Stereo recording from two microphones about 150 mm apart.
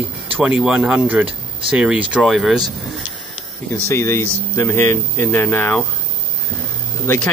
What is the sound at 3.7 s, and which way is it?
Speech, 15° left (ahead or behind).